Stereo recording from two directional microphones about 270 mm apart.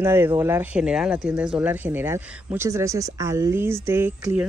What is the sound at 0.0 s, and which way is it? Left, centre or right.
Speech, centre.